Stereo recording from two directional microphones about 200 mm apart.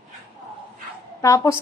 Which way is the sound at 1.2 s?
15° left (ahead or behind).